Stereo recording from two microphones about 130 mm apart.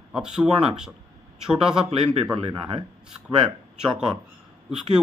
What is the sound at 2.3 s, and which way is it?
Speech, 40° right (ahead or behind).